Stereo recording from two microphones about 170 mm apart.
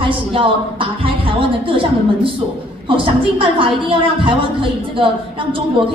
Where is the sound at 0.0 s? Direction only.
30° right (ahead or behind).